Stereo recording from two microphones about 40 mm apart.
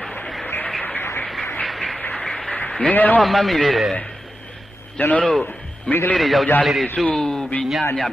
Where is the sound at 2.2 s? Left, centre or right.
Centre.